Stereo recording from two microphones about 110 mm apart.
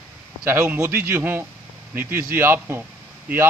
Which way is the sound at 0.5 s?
25° right (ahead or behind).